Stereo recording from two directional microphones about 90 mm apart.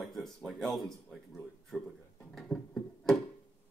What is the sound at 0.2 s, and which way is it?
Speech, 5° left (ahead or behind).